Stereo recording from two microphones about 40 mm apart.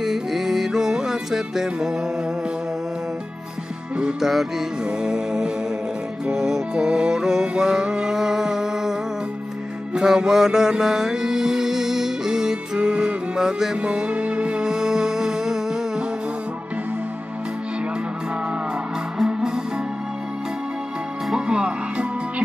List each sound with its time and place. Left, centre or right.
0.0 s music: centre
4.2 s music: centre
4.8 s music: centre
9.9 s mantra: centre
12.8 s music: right
13.4 s music: centre
13.7 s music: right
19.1 s music: centre
21.4 s music: right